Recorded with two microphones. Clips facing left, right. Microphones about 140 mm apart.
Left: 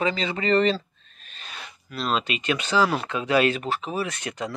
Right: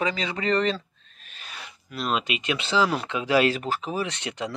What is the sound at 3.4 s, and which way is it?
Speech, 25° right (ahead or behind).